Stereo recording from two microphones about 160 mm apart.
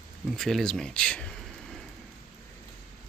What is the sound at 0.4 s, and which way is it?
Speech, centre (ahead or behind).